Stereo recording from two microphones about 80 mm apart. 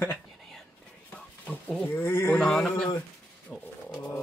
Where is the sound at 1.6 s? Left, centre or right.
Centre.